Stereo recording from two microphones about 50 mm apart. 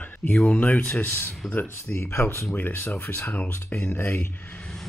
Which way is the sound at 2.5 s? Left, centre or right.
Left.